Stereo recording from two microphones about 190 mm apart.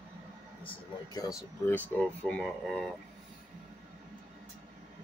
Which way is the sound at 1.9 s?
5° left (ahead or behind).